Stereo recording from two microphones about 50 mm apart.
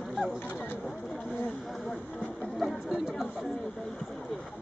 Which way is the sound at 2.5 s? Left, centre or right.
Centre.